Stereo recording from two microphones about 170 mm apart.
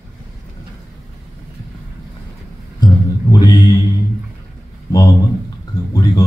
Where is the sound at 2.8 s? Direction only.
25° left (ahead or behind).